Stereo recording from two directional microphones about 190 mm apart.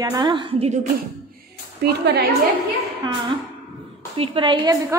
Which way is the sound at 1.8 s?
60° right (ahead or behind).